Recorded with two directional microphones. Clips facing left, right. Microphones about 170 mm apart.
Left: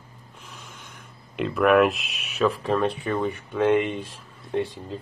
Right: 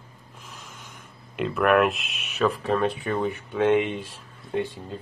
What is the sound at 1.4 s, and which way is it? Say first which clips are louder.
Speech: left 2 dB; centre (ahead or behind).